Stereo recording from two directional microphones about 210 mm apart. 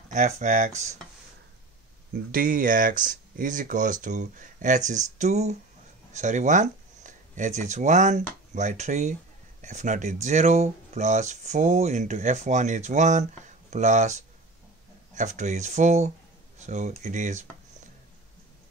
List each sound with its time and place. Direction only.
0.1 s speech: 35° right (ahead or behind)
2.3 s speech: 40° right (ahead or behind)